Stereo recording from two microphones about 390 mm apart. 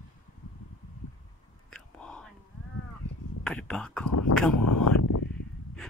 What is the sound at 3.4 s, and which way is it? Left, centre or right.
Whispering, centre.